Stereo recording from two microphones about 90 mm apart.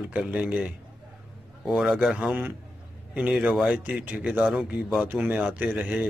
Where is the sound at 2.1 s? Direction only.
15° right (ahead or behind).